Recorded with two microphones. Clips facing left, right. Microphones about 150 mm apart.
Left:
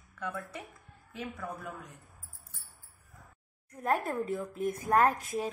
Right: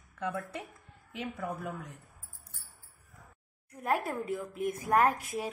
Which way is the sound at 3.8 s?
10° right (ahead or behind).